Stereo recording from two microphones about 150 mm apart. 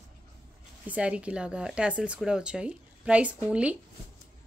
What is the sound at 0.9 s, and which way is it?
Speech, 10° right (ahead or behind).